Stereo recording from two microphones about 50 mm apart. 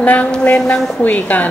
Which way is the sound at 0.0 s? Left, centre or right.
Left.